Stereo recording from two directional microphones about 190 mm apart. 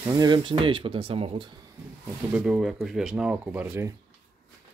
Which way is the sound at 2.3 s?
5° right (ahead or behind).